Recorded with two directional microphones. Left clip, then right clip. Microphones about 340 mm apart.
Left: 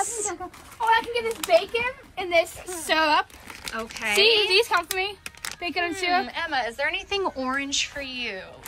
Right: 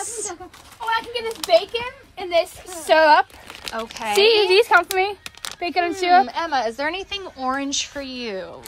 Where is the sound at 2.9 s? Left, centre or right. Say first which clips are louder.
Right 8 dB; right.